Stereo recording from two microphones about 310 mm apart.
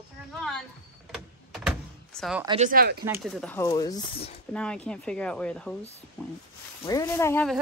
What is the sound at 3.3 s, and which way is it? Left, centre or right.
Speech, centre.